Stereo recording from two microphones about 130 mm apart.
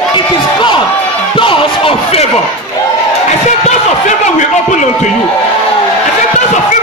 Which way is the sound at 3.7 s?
70° left (ahead or behind).